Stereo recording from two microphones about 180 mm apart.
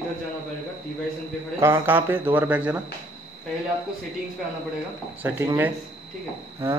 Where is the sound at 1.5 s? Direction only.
15° right (ahead or behind).